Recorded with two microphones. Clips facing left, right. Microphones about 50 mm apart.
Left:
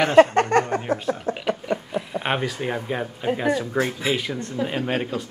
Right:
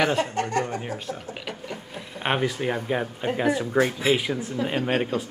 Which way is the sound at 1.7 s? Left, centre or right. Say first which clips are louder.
Left 10 dB; centre.